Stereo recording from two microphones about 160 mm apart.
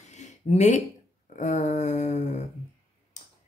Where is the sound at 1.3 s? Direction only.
50° left (ahead or behind).